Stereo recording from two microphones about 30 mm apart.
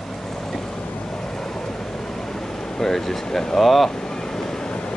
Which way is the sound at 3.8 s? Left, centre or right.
Left.